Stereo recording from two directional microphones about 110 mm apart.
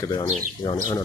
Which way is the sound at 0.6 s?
45° left (ahead or behind).